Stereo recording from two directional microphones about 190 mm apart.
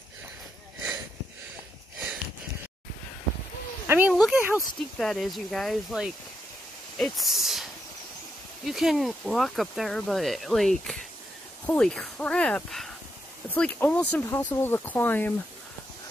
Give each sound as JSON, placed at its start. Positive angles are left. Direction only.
{"t": 3.8, "sound": "speech", "side_deg": -10}
{"t": 8.6, "sound": "speech", "side_deg": 0}